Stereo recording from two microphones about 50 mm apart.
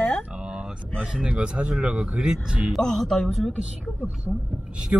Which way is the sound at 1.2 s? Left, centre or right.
Right.